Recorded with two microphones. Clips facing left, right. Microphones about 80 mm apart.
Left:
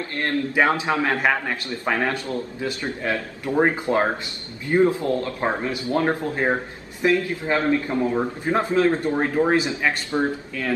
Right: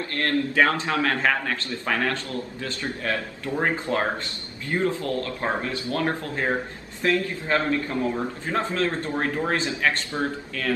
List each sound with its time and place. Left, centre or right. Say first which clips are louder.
0.0 s a man's voice: even; left